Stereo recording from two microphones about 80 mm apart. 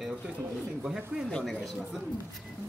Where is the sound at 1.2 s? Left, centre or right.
Centre.